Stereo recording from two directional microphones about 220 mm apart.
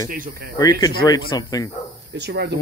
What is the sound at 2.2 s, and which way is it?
Speech, 50° right (ahead or behind).